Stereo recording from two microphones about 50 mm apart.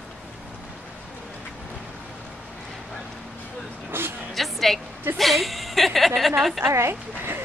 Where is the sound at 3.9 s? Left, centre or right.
Right.